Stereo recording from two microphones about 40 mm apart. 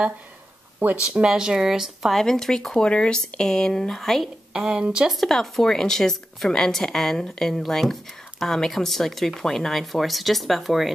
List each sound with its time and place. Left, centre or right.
0.8 s speech: right
1.2 s speech: centre
2.2 s a woman's voice: centre
4.6 s speech: centre
5.3 s a woman's voice: centre